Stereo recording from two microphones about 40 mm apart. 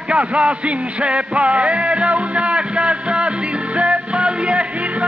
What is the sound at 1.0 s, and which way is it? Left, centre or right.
Music, right.